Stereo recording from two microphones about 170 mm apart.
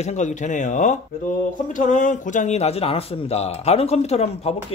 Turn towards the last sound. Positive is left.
turn(degrees=40)  # may be behind; listen again after turning